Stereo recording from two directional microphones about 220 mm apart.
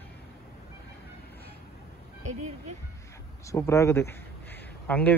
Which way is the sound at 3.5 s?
15° left (ahead or behind).